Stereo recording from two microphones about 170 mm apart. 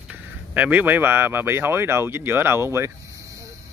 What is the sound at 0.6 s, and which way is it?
Speech, 10° right (ahead or behind).